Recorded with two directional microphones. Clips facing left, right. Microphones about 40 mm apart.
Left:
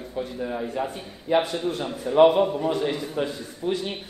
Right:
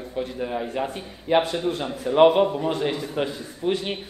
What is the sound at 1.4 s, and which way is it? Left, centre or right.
A man's voice, right.